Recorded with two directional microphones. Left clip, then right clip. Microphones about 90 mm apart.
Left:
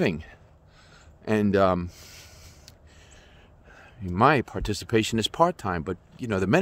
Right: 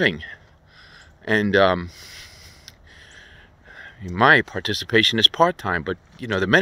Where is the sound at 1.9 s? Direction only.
65° left (ahead or behind).